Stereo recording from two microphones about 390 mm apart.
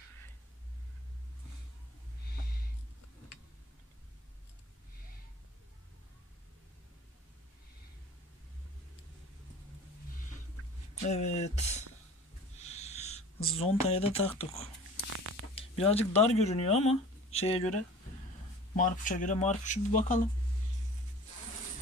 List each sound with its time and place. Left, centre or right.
11.0 s speech: centre
12.5 s a sound: centre
14.4 s speech: centre
15.0 s a sound: right
15.5 s speech: centre
18.8 s speech: centre